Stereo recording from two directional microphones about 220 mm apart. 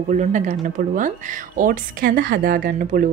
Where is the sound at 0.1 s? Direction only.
35° right (ahead or behind).